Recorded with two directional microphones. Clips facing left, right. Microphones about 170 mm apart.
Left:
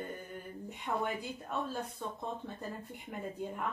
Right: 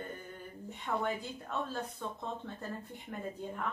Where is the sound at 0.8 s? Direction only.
15° left (ahead or behind).